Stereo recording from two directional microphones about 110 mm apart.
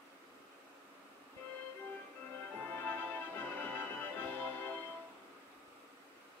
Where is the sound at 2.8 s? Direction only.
15° left (ahead or behind).